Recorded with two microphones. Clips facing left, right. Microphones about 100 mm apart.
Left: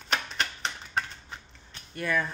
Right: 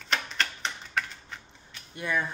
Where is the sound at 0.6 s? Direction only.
30° left (ahead or behind).